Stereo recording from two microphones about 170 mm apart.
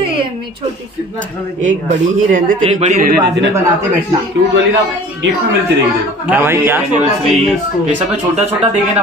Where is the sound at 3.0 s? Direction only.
85° right.